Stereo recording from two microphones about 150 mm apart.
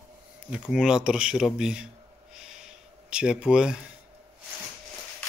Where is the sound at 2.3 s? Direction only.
5° right (ahead or behind).